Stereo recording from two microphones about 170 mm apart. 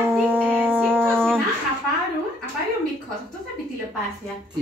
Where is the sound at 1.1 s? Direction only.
5° left (ahead or behind).